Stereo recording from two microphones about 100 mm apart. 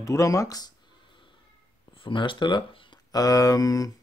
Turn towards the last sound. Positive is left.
turn(degrees=35)  # may be behind; listen again after turning